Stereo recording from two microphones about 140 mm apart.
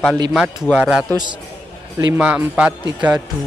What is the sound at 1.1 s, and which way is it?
Speech, 35° right (ahead or behind).